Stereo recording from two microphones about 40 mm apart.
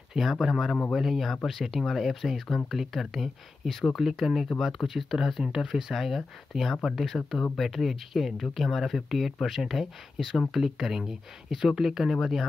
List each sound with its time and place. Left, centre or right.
0.1 s speech: centre